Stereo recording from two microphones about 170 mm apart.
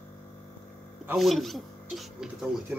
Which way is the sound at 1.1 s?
Centre (ahead or behind).